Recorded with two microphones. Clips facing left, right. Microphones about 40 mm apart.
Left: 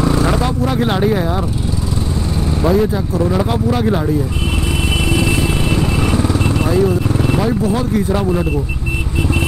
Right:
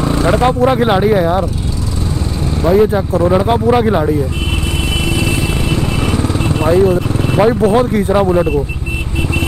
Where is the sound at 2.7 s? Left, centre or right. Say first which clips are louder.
Right 7 dB; right.